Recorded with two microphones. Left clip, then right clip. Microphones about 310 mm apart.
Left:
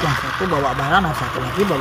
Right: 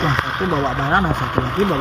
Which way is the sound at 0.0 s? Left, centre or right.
Centre.